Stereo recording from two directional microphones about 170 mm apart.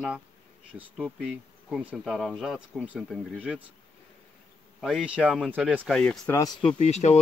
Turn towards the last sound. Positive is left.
turn(degrees=40)  # may be behind; listen again after turning